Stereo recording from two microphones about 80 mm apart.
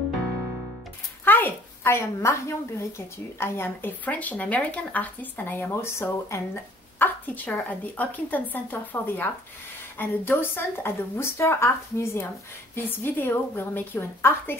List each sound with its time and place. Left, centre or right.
1.2 s a woman's voice: left